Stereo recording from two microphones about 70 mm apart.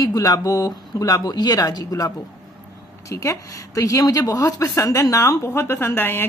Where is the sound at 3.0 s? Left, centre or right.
Left.